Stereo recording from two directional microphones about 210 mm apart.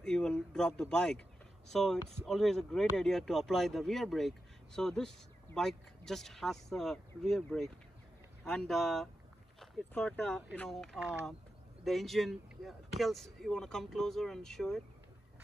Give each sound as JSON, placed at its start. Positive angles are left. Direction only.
{"t": 0.0, "sound": "speech", "side_deg": 5}